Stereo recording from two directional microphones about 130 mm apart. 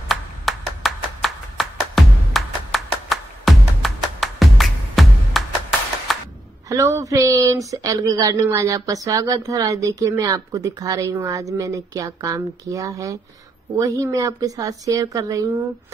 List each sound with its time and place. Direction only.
0.1 s clapping: centre (ahead or behind)
6.1 s a sound: centre (ahead or behind)
6.7 s speech: 25° right (ahead or behind)